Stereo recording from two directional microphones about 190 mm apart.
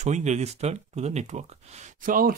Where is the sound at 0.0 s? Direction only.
40° right (ahead or behind).